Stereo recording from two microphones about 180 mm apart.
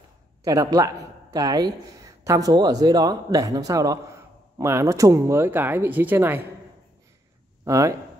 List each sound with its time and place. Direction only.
0.5 s speech: 20° right (ahead or behind)
7.6 s speech: 15° right (ahead or behind)